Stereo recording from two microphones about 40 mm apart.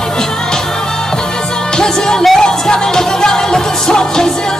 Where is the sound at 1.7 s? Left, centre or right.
Centre.